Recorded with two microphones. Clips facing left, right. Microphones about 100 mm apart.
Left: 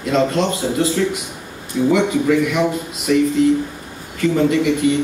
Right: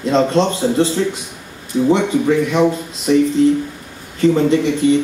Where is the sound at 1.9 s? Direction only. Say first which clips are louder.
Right 1 dB; 30° right (ahead or behind).